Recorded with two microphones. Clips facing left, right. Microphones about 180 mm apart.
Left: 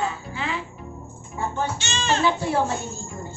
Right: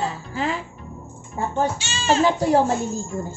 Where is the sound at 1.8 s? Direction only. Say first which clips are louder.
Right 3 dB; 10° right (ahead or behind).